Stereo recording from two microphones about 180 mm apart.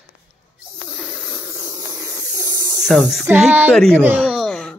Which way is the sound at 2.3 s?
20° right (ahead or behind).